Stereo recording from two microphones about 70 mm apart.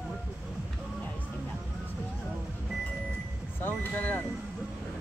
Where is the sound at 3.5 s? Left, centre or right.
Left.